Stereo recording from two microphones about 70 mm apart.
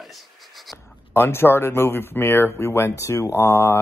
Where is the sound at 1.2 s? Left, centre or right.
Left.